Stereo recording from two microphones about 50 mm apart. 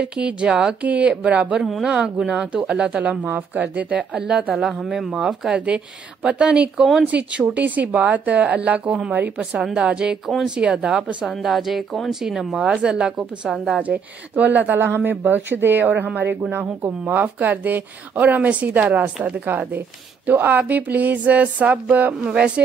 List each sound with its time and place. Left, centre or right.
0.0 s speech: right
0.8 s speech: right
4.6 s speech: centre
6.2 s speech: right
10.2 s speech: centre
11.4 s speech: centre
12.5 s speech: centre
13.8 s speech: right